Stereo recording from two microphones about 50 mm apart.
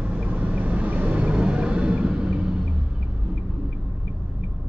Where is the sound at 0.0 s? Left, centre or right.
Right.